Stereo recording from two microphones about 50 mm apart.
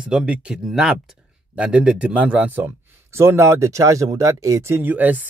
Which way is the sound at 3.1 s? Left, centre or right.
Right.